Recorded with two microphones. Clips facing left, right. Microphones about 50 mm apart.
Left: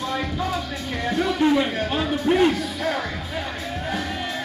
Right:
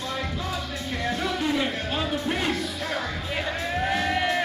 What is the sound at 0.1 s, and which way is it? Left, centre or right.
Music, left.